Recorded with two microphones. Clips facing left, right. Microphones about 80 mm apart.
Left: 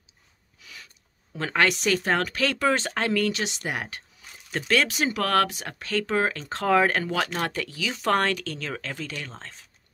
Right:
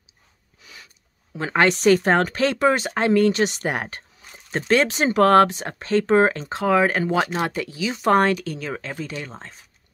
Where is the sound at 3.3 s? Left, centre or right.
Right.